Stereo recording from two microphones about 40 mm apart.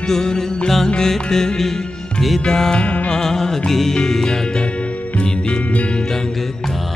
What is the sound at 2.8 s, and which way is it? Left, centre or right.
Music, left.